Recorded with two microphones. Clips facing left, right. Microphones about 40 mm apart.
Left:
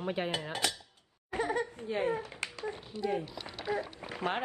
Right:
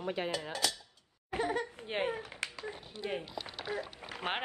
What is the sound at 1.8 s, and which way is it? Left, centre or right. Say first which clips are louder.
Speech: left 4 dB; right.